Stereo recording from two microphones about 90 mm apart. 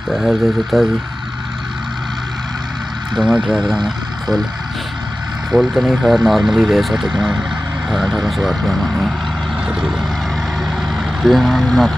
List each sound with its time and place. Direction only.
0.1 s speech: centre (ahead or behind)
3.2 s speech: 10° right (ahead or behind)
5.5 s speech: 5° right (ahead or behind)
9.7 s vehicle: 5° right (ahead or behind)
11.2 s speech: centre (ahead or behind)